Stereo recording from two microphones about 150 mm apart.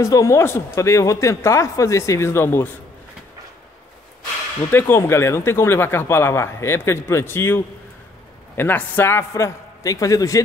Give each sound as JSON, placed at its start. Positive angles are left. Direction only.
{"t": 0.0, "sound": "speech", "side_deg": 20}
{"t": 4.6, "sound": "speech", "side_deg": 15}